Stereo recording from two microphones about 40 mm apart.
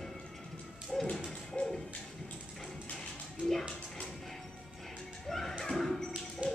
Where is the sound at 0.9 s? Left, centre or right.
Centre.